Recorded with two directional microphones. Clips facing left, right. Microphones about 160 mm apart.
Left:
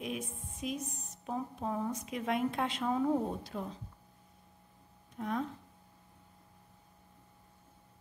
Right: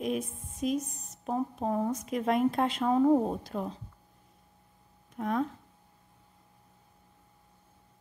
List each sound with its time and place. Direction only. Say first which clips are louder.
0.0 s a woman's voice: right 7 dB; 45° right (ahead or behind)
5.2 s speech: right 5 dB; 55° right (ahead or behind)